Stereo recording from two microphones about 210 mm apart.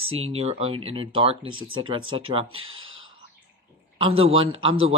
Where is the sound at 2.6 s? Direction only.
70° right (ahead or behind).